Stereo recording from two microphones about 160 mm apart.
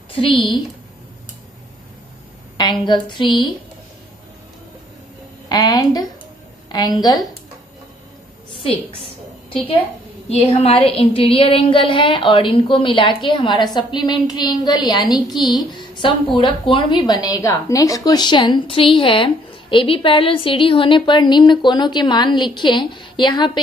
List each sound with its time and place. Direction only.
0.1 s a woman's voice: 35° left (ahead or behind)
2.5 s a woman's voice: 25° left (ahead or behind)
5.5 s a woman's voice: 25° left (ahead or behind)
10.5 s a woman's voice: 35° left (ahead or behind)